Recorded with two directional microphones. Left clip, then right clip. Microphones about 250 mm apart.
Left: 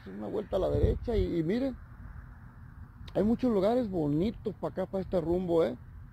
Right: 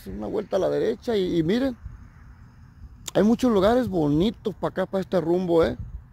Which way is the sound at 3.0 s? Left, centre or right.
Right.